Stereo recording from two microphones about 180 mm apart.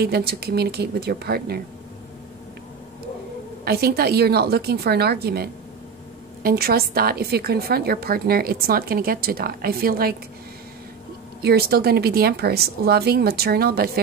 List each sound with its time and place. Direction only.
0.0 s a woman's voice: 60° right (ahead or behind)
3.6 s a woman's voice: 60° right (ahead or behind)
11.4 s a woman's voice: 60° right (ahead or behind)